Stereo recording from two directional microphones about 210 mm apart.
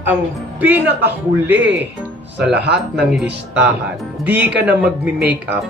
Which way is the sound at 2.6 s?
50° right (ahead or behind).